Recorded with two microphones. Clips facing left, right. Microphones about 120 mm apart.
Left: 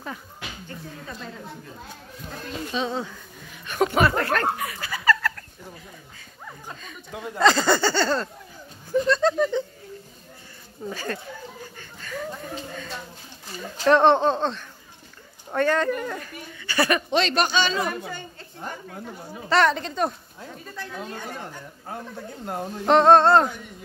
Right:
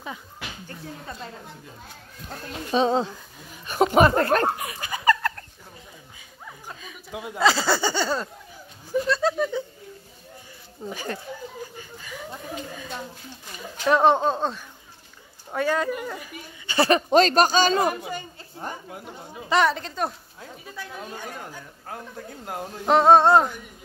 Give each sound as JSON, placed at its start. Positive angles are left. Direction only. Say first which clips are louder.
{"t": 2.7, "sound": "speech", "louder": "right 8 dB", "side_deg": -35}
{"t": 6.7, "sound": "speech", "louder": "right 2 dB", "side_deg": -5}
{"t": 10.9, "sound": "speech", "louder": "left 1 dB", "side_deg": -15}
{"t": 11.7, "sound": "a sound", "louder": "left 3 dB", "side_deg": -15}
{"t": 12.7, "sound": "speech", "louder": "right 1 dB", "side_deg": -10}
{"t": 16.6, "sound": "speech", "louder": "right 3 dB", "side_deg": -25}
{"t": 17.1, "sound": "speech", "louder": "right 5 dB", "side_deg": -40}
{"t": 18.9, "sound": "speech", "louder": "left 2 dB", "side_deg": -15}
{"t": 19.7, "sound": "speech", "louder": "left 3 dB", "side_deg": 0}